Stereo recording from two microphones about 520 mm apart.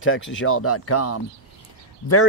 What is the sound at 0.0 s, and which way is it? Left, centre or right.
A man's voice, left.